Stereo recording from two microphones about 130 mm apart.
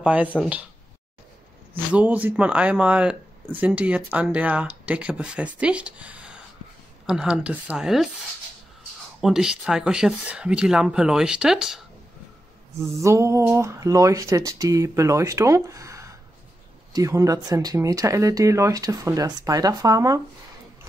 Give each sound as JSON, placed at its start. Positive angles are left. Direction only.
{"t": 0.0, "sound": "speech", "side_deg": -10}
{"t": 2.0, "sound": "speech", "side_deg": -10}
{"t": 12.8, "sound": "speech", "side_deg": -20}